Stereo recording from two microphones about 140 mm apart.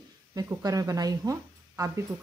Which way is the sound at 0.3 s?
25° right (ahead or behind).